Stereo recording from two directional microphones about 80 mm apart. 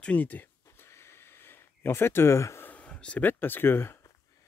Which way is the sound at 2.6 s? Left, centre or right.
Centre.